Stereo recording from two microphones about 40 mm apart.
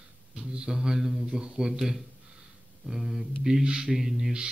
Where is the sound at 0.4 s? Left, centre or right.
Right; by 3.3 s centre.